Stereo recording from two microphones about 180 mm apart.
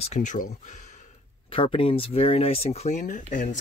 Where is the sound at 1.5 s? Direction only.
30° left (ahead or behind); by 3.4 s 45° left (ahead or behind).